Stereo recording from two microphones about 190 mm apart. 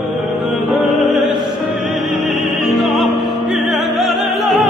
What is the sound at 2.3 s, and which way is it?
Opera, centre (ahead or behind).